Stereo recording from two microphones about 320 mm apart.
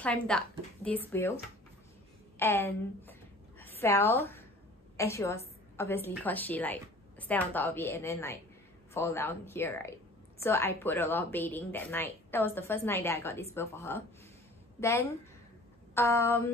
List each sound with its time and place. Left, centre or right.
0.0 s a woman's voice: centre
2.3 s a sound: centre
4.9 s a woman's voice: centre